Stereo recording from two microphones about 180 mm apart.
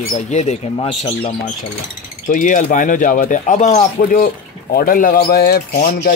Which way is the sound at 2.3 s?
45° left (ahead or behind).